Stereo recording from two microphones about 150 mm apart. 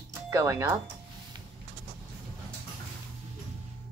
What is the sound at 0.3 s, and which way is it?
Speech, 20° right (ahead or behind).